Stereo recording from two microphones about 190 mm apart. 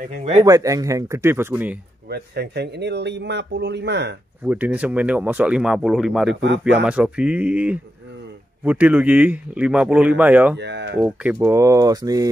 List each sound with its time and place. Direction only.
0.1 s speech: 35° right (ahead or behind)
0.4 s speech: 15° right (ahead or behind)
2.0 s speech: 55° right (ahead or behind)
4.5 s speech: 5° right (ahead or behind)
10.6 s speech: 65° right (ahead or behind)
11.0 s speech: 5° right (ahead or behind)